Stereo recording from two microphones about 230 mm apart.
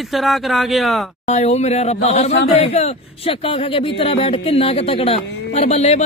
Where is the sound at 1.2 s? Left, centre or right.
Left.